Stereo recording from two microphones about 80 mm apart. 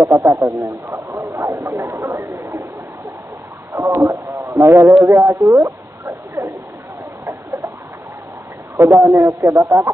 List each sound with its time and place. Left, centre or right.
0.1 s speech: right
3.7 s a man's voice: right
5.0 s a sound: right
8.7 s speech: right